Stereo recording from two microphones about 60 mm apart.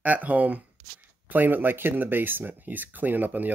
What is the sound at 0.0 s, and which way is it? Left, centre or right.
Speech, right.